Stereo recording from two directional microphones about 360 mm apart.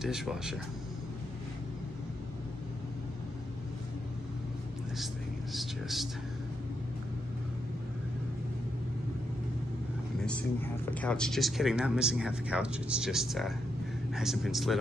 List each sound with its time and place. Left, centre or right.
0.0 s speech: centre
4.9 s a sound: centre
10.2 s speech: centre